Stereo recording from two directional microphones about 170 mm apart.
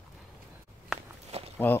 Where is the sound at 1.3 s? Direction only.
35° right (ahead or behind).